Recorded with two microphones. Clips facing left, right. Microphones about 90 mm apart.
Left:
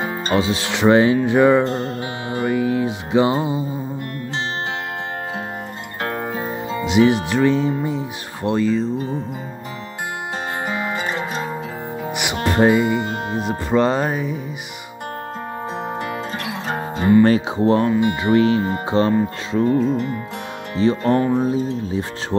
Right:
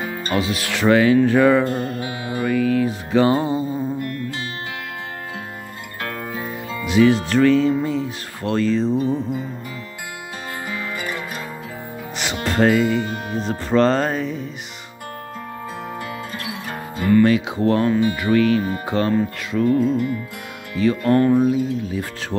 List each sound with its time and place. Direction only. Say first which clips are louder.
0.0 s speech: left 3 dB; 25° left (ahead or behind)
6.7 s speech: even; 25° left (ahead or behind)
8.9 s speech: right 4 dB; 25° left (ahead or behind)
10.7 s music: left 3 dB; 25° left (ahead or behind)
12.4 s speech: left 1 dB; 20° left (ahead or behind)
16.6 s music: left 3 dB; 25° left (ahead or behind)
17.3 s speech: left 2 dB; 25° left (ahead or behind)